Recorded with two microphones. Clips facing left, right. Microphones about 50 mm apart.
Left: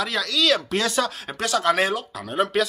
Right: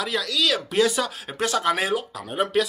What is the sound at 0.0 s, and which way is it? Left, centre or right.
Speech, centre.